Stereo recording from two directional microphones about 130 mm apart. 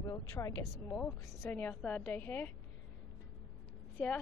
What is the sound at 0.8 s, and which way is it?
Speech, 10° left (ahead or behind).